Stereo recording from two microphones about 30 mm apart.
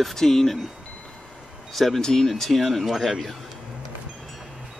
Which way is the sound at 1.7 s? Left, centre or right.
Centre.